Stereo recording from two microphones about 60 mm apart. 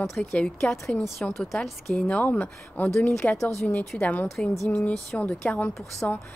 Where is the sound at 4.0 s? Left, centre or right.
Left.